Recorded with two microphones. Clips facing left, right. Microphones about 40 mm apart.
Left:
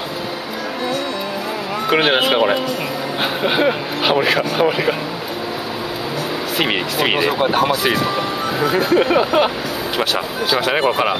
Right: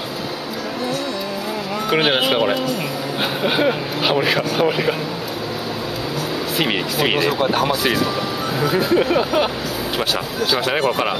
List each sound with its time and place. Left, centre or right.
1.9 s speech: centre
6.6 s speech: centre
10.5 s speech: centre